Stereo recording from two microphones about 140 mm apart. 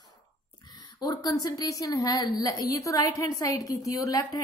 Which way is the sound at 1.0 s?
30° left (ahead or behind).